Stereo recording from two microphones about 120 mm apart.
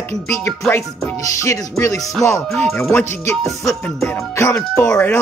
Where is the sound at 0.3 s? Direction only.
20° left (ahead or behind).